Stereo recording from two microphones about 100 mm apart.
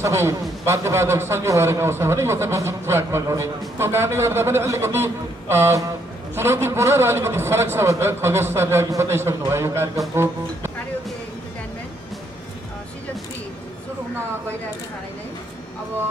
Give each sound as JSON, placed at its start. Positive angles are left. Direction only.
{"t": 0.0, "sound": "a man's voice", "side_deg": -30}